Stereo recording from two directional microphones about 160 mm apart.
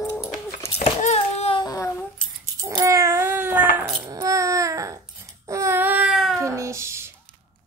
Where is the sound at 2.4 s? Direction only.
20° right (ahead or behind); by 6.4 s centre (ahead or behind).